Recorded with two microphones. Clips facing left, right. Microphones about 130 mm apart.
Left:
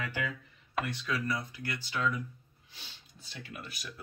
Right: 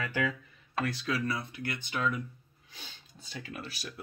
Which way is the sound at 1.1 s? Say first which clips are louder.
Right 1 dB; 25° right (ahead or behind).